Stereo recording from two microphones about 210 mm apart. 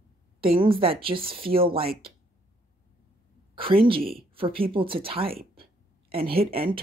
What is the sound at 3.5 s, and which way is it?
Speech, 25° right (ahead or behind).